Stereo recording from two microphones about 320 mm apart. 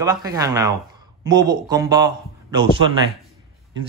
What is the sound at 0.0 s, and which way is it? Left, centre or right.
A man's voice, centre.